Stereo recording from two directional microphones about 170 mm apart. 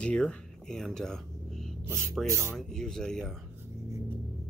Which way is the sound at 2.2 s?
15° right (ahead or behind).